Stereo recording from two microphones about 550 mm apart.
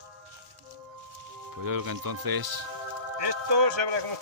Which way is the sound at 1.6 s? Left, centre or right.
Right.